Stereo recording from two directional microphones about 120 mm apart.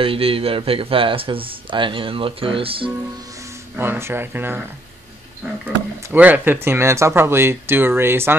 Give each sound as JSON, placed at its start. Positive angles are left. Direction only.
{"t": 0.0, "sound": "speech", "side_deg": -50}
{"t": 3.7, "sound": "speech", "side_deg": -20}
{"t": 6.1, "sound": "speech", "side_deg": -15}